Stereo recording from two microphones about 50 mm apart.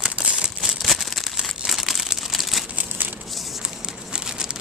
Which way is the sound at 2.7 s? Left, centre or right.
Right.